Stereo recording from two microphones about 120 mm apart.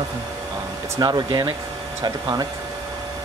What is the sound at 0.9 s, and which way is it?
Speech, 35° right (ahead or behind).